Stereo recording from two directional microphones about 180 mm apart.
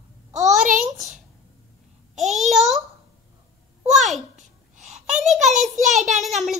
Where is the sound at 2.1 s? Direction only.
40° right (ahead or behind).